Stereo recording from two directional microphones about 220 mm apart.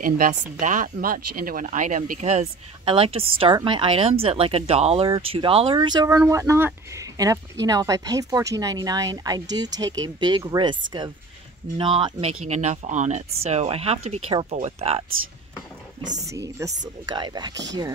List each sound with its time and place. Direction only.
0.0 s speech: 40° right (ahead or behind); by 10.8 s 20° right (ahead or behind)
11.8 s speech: 25° right (ahead or behind)
16.1 s speech: 15° right (ahead or behind)